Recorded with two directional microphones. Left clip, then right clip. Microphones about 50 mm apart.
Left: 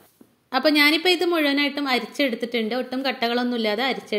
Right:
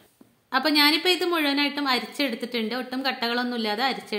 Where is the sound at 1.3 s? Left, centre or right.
Left.